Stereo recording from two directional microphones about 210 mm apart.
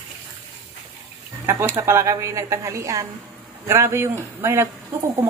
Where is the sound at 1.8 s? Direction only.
15° right (ahead or behind).